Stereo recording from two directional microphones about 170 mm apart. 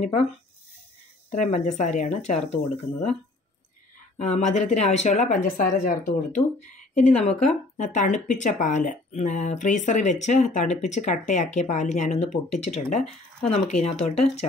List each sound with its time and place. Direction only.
0.0 s speech: 40° left (ahead or behind)
1.3 s speech: 45° left (ahead or behind)
4.2 s speech: 45° left (ahead or behind)